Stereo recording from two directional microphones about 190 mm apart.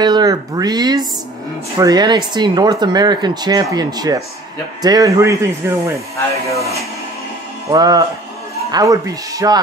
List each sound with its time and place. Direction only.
0.0 s speech: 20° right (ahead or behind)
6.1 s speech: 15° left (ahead or behind)
6.6 s speech: 15° right (ahead or behind)